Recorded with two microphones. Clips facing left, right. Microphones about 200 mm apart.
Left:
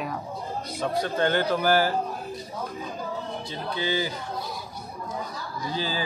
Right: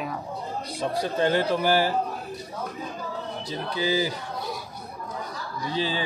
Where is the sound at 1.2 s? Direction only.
Centre (ahead or behind).